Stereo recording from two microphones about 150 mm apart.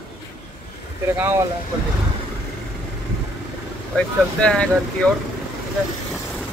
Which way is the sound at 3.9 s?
5° left (ahead or behind).